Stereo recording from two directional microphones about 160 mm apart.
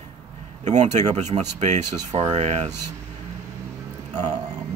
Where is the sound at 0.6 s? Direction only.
45° right (ahead or behind).